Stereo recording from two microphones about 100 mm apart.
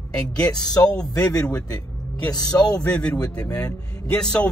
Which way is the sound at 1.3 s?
10° left (ahead or behind).